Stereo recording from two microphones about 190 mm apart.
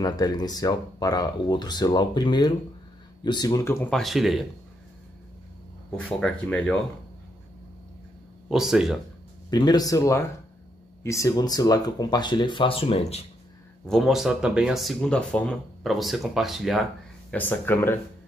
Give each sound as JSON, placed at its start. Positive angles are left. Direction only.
{"t": 0.0, "sound": "speech", "side_deg": 20}
{"t": 3.9, "sound": "speech", "side_deg": 0}
{"t": 6.0, "sound": "speech", "side_deg": 0}
{"t": 8.5, "sound": "speech", "side_deg": -5}
{"t": 9.5, "sound": "speech", "side_deg": 20}
{"t": 13.8, "sound": "speech", "side_deg": 0}
{"t": 17.3, "sound": "speech", "side_deg": 10}